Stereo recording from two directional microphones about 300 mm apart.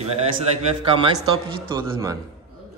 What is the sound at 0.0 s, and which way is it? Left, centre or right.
A man's voice, right.